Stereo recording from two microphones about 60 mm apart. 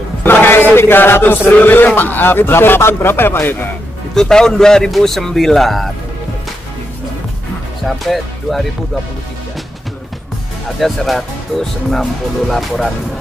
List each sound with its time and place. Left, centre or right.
0.2 s chant: left
1.5 s a man's voice: left
4.1 s a man's voice: centre
7.8 s speech: centre
10.8 s speech: centre